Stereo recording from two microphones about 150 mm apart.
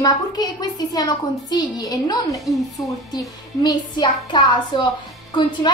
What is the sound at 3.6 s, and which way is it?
A woman's voice, 30° left (ahead or behind).